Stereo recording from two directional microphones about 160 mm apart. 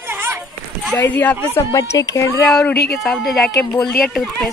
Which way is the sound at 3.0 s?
Centre (ahead or behind).